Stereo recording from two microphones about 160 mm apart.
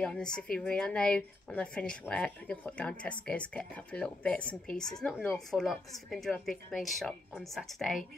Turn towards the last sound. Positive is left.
turn(degrees=0)  # may be behind; listen again after turning